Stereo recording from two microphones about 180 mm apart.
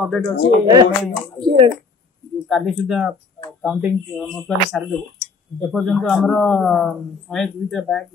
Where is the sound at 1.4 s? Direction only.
25° right (ahead or behind).